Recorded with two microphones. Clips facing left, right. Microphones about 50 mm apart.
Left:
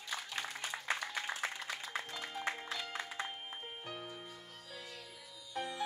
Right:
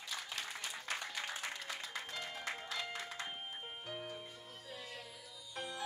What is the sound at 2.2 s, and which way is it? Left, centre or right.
Music, left.